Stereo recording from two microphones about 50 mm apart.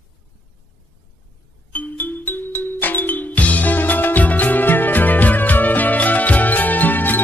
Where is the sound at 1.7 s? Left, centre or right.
Left.